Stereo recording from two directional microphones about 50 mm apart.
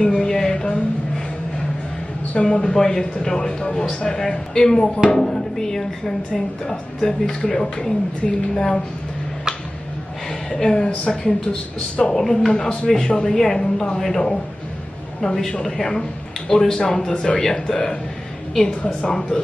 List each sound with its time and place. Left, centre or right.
0.0 s a sound: centre
2.3 s speech: centre
10.5 s speech: centre
18.9 s speech: centre